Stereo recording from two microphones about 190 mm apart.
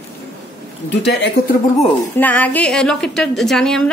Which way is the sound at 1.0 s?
65° left (ahead or behind).